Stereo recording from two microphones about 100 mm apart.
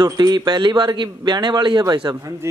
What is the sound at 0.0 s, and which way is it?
A man's voice, 45° right (ahead or behind).